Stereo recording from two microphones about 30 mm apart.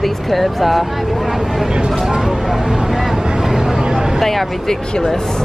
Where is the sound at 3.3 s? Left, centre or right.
Centre.